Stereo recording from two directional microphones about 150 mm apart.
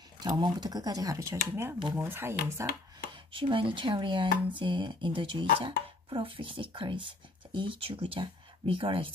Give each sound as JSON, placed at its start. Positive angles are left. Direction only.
{"t": 0.2, "sound": "speech", "side_deg": -30}
{"t": 3.1, "sound": "speech", "side_deg": -35}